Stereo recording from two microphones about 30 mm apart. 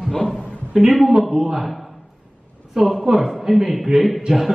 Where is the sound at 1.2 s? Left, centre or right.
Centre.